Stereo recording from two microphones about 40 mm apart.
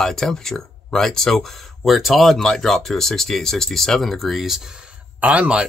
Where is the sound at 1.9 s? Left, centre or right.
Centre.